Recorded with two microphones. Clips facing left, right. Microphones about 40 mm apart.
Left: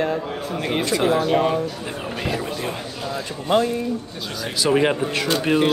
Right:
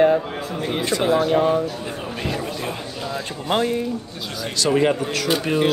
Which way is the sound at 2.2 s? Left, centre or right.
Centre.